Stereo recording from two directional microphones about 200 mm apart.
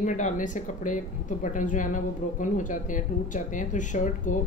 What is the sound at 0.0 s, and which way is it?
Speech, 40° left (ahead or behind).